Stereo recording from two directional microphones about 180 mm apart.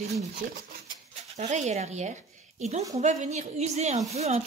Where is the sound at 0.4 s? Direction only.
45° right (ahead or behind).